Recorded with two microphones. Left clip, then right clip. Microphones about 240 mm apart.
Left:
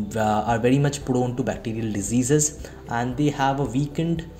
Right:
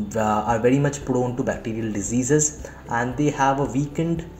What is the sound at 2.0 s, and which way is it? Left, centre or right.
Speech, left.